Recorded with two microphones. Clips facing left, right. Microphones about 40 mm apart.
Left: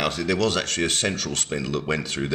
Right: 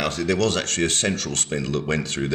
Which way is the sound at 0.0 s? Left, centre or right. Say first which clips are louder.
Right 1 dB; centre.